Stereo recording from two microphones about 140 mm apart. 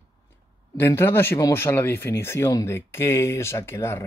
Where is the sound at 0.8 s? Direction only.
15° left (ahead or behind).